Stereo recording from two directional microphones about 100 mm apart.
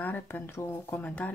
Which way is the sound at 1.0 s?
15° left (ahead or behind).